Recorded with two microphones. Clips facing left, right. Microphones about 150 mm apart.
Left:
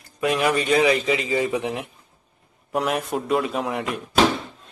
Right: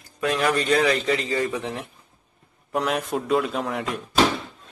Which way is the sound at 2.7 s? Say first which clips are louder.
Left 1 dB; centre (ahead or behind).